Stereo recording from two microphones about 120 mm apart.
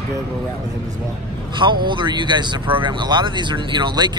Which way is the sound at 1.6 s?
40° right (ahead or behind).